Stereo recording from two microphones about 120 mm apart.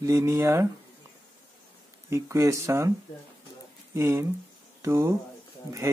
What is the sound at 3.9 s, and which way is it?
Speech, 25° right (ahead or behind).